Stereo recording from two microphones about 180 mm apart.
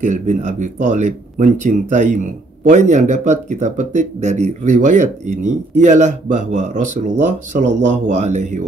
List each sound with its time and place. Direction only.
0.0 s speech: 45° right (ahead or behind)